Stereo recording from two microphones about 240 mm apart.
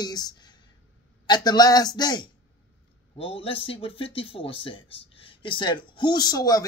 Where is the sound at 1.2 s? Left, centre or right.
Centre.